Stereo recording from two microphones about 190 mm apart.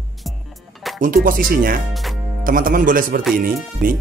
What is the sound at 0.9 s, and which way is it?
Speech, 45° right (ahead or behind).